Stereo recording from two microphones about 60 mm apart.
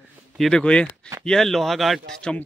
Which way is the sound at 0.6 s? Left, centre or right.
Centre.